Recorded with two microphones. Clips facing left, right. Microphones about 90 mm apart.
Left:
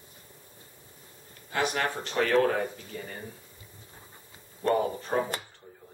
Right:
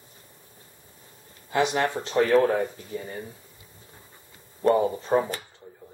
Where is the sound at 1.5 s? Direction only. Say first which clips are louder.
Right 5 dB; 20° right (ahead or behind).